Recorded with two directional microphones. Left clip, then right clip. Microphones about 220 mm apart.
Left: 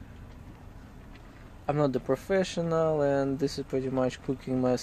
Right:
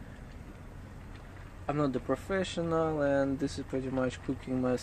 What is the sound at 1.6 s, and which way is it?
Speech, 30° left (ahead or behind).